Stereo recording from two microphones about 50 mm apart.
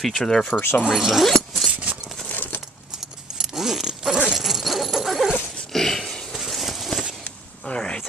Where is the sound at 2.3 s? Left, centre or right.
Left.